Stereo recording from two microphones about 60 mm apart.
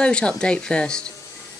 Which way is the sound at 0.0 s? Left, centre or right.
Centre.